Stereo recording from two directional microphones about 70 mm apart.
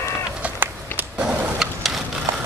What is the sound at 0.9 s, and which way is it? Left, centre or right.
Skateboard, left.